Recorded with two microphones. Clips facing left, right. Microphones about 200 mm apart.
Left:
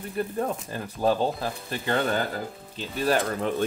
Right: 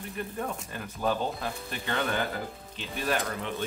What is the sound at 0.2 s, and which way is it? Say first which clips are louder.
Speech: left 7 dB; 40° left (ahead or behind).